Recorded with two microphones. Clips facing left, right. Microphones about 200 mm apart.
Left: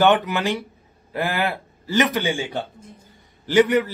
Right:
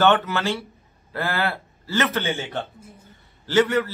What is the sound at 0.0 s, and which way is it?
A man's voice, 15° left (ahead or behind).